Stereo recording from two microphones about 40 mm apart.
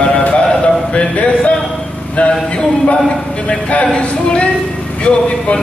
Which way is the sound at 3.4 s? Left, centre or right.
Left.